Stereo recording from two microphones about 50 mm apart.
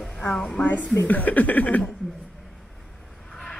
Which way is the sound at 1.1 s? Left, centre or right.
Left.